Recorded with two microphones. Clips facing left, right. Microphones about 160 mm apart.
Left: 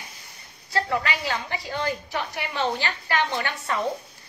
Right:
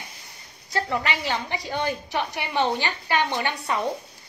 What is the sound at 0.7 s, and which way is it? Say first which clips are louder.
A woman's voice: even; 20° right (ahead or behind).